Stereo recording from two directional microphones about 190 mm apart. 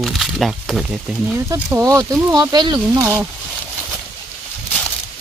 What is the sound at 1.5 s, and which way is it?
Speech, 15° right (ahead or behind).